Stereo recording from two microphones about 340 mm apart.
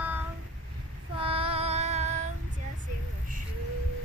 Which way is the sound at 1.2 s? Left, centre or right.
Centre.